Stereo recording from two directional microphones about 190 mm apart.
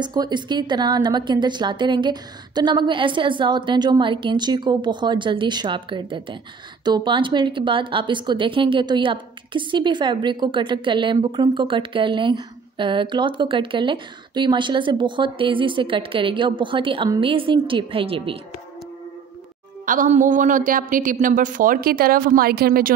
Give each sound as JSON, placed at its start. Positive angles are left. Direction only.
{"t": 0.0, "sound": "a woman's voice", "side_deg": -20}
{"t": 19.9, "sound": "a woman's voice", "side_deg": -45}